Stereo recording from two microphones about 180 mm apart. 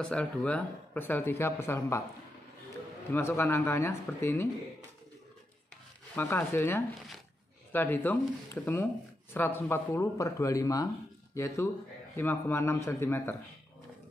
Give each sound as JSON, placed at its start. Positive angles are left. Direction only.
{"t": 0.0, "sound": "speech", "side_deg": 5}
{"t": 3.1, "sound": "speech", "side_deg": 15}
{"t": 6.1, "sound": "speech", "side_deg": 10}